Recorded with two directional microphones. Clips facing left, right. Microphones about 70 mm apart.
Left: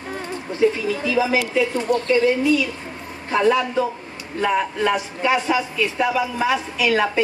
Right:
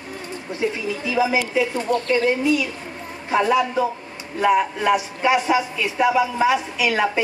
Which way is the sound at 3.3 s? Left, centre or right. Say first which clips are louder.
Even; centre.